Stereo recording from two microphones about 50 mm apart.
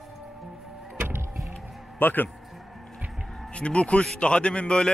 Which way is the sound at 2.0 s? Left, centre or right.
Left.